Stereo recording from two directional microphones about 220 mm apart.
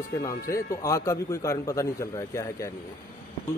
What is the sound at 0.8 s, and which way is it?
A man's voice, 15° left (ahead or behind).